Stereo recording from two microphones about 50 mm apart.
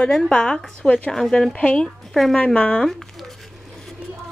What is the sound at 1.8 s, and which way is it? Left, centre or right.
Speech, centre.